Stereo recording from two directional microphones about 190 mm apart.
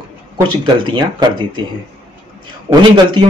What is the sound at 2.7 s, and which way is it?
Speech, 20° right (ahead or behind).